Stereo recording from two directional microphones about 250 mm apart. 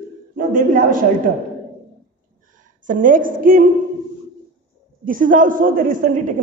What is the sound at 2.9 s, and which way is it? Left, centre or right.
Speech, right.